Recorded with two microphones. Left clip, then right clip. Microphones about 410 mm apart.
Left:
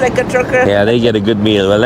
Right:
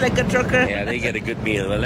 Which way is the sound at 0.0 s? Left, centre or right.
Centre.